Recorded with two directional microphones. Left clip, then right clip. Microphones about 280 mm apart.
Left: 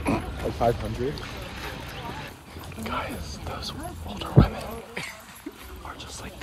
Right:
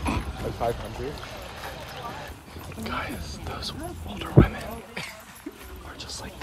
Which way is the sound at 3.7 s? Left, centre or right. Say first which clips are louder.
Even; right.